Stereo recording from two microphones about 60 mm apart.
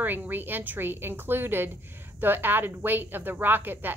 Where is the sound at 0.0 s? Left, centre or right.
Right.